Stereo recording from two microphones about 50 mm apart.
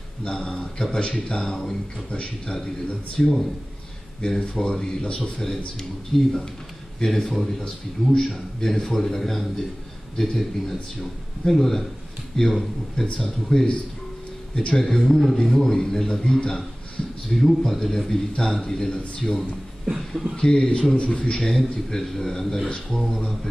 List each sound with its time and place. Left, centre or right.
0.4 s a man's voice: centre
2.0 s a man's voice: left
3.2 s a man's voice: centre
4.2 s a man's voice: centre
14.8 s a man's voice: centre
17.3 s a man's voice: centre
18.3 s a man's voice: centre
20.4 s a man's voice: centre